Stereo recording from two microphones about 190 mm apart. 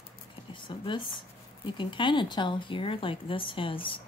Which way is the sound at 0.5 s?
25° left (ahead or behind).